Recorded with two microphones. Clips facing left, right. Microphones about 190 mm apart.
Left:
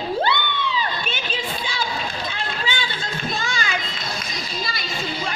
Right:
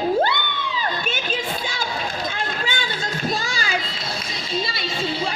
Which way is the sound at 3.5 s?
35° right (ahead or behind).